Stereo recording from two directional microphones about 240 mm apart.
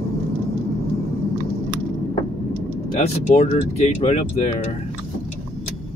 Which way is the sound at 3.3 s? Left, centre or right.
Left.